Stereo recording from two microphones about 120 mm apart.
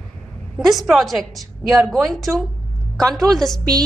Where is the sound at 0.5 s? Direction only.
Centre (ahead or behind).